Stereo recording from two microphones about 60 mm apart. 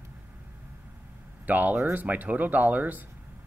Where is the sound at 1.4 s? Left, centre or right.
Right.